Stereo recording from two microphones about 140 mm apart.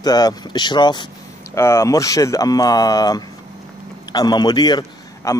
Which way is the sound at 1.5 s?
20° left (ahead or behind).